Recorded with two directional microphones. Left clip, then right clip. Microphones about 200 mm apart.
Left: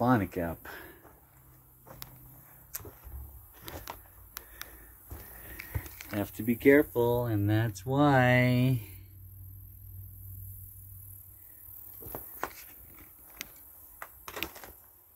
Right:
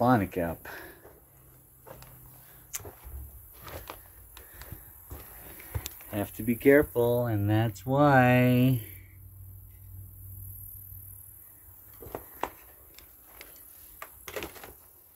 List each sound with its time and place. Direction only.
0.0 s speech: centre (ahead or behind)
5.7 s speech: 15° left (ahead or behind)
12.0 s a sound: 10° left (ahead or behind)